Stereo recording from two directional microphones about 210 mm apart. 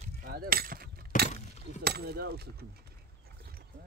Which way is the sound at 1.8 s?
50° right (ahead or behind).